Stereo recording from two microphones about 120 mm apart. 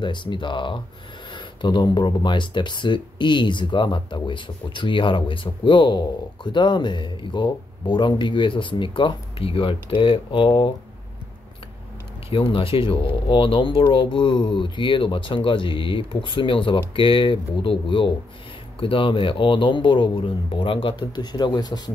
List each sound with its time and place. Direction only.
0.0 s speech: 40° left (ahead or behind)
12.3 s speech: 45° left (ahead or behind)